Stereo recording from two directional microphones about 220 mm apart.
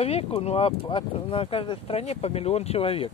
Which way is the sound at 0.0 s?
25° left (ahead or behind).